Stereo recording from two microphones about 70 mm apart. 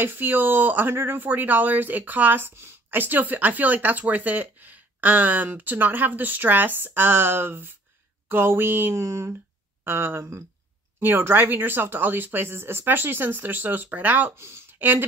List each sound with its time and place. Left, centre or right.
0.0 s speech: right
8.3 s a sound: right
11.0 s speech: right